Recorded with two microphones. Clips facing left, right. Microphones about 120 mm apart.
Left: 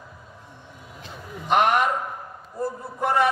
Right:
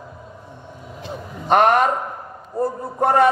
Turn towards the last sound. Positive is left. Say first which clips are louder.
# right 6 dB
turn(degrees=-40)  # may be behind; listen again after turning